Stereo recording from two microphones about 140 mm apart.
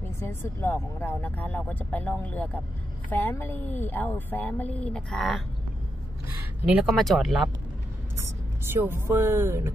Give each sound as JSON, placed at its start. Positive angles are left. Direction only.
{"t": 0.2, "sound": "speech", "side_deg": 15}
{"t": 6.6, "sound": "speech", "side_deg": -5}
{"t": 8.6, "sound": "speech", "side_deg": -15}